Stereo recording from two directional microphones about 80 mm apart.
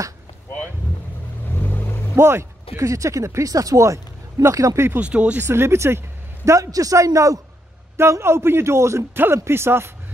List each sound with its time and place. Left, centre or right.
1.5 s vehicle: left
2.1 s speech: right
5.0 s speech: centre
5.4 s a man's voice: right